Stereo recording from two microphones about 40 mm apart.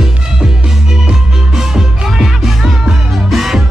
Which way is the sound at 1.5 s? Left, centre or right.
Centre.